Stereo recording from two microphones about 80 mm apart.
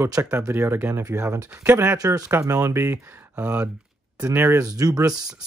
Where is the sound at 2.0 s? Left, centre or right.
Right; by 3.7 s centre.